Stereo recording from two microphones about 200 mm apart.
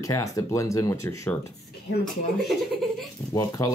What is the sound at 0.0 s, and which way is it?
Speech, 15° left (ahead or behind).